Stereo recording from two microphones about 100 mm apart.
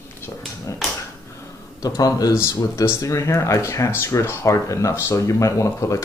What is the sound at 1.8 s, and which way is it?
Speech, 40° left (ahead or behind).